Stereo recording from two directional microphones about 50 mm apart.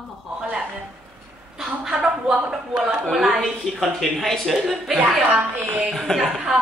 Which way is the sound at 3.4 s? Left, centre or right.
Centre.